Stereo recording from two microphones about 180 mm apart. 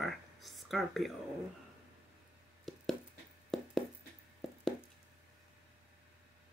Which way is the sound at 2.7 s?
Centre (ahead or behind).